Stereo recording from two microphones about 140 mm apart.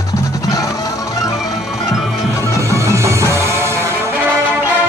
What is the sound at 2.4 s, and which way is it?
Music, 20° left (ahead or behind).